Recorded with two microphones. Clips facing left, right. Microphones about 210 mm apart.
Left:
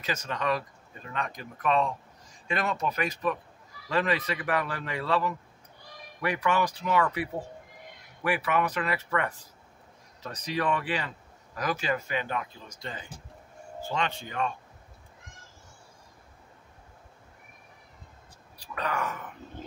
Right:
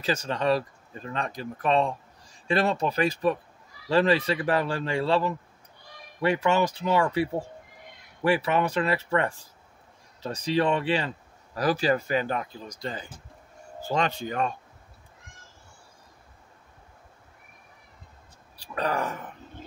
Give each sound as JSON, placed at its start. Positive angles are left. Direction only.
{"t": 0.0, "sound": "speech", "side_deg": -30}
{"t": 18.6, "sound": "speech", "side_deg": -35}